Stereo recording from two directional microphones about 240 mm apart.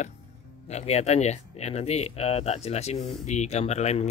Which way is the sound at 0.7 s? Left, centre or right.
Left.